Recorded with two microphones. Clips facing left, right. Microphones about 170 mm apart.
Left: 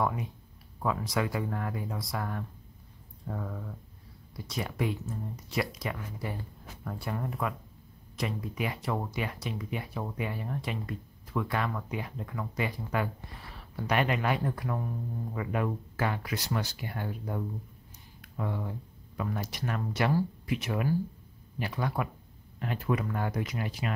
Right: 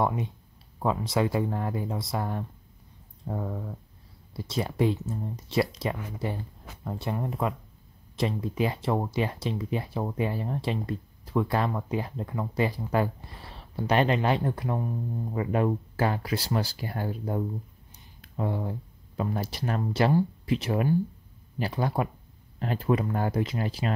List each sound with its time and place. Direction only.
0.0 s speech: 25° right (ahead or behind)